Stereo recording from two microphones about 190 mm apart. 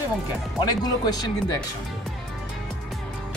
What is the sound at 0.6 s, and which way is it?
Speech, 20° left (ahead or behind).